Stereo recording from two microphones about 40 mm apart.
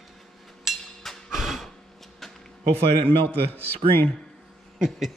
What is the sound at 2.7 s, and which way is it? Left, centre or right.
Speech, left.